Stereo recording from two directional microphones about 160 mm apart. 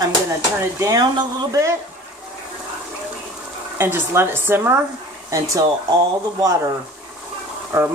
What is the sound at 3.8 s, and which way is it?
Speech, 15° right (ahead or behind).